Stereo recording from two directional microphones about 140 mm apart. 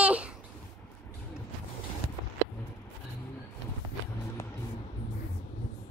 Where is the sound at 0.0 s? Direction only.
10° right (ahead or behind).